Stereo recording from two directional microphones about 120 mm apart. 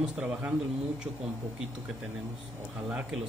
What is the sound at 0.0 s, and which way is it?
Speech, 10° right (ahead or behind).